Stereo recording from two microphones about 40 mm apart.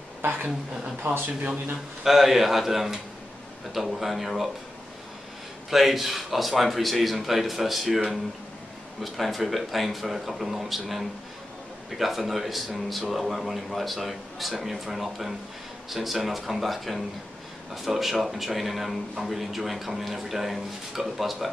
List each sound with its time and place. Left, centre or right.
0.2 s a woman's voice: right
2.0 s a man's voice: centre
5.7 s speech: centre